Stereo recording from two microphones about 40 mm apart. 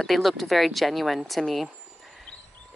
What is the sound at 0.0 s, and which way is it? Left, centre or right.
Speech, centre.